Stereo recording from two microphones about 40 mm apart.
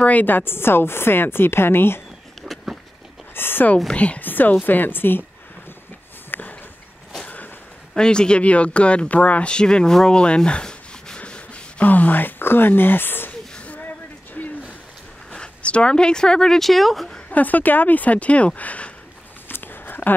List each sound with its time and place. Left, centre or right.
0.0 s a woman's voice: left
0.5 s a woman's voice: left
3.3 s speech: left
3.9 s speech: left
4.2 s a woman's voice: left
6.3 s a sound: left
7.9 s speech: left
9.5 s speech: left
10.0 s rub: left
11.8 s speech: left
14.4 s a sound: left
15.3 s speech: left; by 17.1 s centre
17.3 s speech: left
19.4 s a sound: left